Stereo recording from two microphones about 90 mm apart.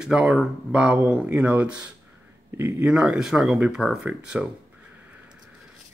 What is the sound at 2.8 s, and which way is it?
Speech, 5° right (ahead or behind).